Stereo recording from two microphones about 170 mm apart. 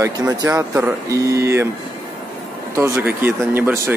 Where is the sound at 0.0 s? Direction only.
20° right (ahead or behind).